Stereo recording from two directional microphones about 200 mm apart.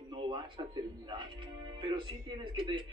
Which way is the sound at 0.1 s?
25° right (ahead or behind).